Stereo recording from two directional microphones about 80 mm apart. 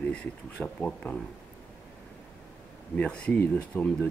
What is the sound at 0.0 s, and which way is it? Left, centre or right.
Speech, centre.